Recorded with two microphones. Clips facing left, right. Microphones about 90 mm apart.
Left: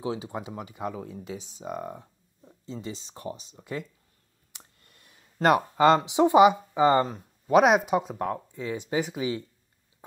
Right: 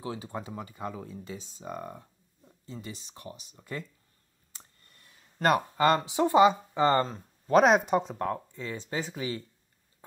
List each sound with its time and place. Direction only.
0.0 s speech: 20° left (ahead or behind)
3.5 s speech: 15° left (ahead or behind)